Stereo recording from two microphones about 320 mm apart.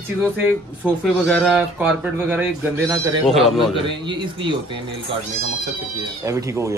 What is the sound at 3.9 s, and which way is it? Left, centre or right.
Speech, centre.